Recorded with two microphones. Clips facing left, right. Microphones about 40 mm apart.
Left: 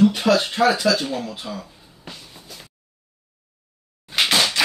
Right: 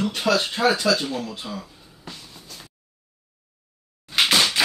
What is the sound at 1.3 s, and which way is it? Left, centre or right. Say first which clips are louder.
Speech: left 1 dB; centre.